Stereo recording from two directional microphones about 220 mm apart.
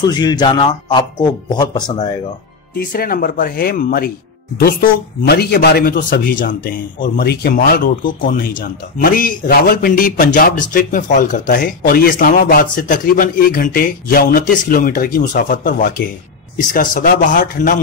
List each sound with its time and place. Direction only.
0.0 s a man's voice: 20° left (ahead or behind)
2.8 s a man's voice: 40° left (ahead or behind)